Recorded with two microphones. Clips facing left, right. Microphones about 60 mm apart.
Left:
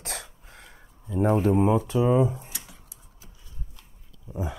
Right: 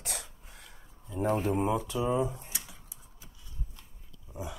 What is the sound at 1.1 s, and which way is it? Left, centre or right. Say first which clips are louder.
Speech: left 7 dB; left.